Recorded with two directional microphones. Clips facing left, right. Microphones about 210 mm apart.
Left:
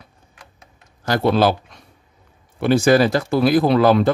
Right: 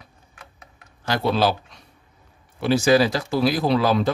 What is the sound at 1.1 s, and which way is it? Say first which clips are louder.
A man's voice: left 4 dB; 50° left (ahead or behind).